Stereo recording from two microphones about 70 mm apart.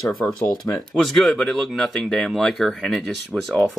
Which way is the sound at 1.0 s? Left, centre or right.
Centre.